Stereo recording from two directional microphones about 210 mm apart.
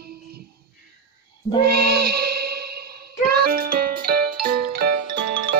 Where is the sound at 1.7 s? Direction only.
50° right (ahead or behind).